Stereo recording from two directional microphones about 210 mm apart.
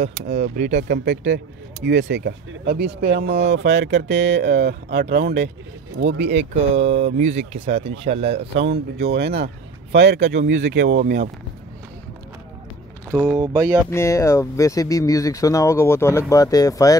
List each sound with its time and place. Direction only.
0.0 s speech: 30° right (ahead or behind)
0.8 s speech: 55° right (ahead or behind)
6.8 s speech: 30° right (ahead or behind)
8.6 s speech: 50° right (ahead or behind)
13.1 s speech: 5° right (ahead or behind)
13.4 s a sound: 15° right (ahead or behind)
13.8 s speech: 15° left (ahead or behind)